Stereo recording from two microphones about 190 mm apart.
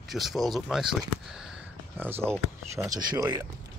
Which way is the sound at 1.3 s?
5° right (ahead or behind).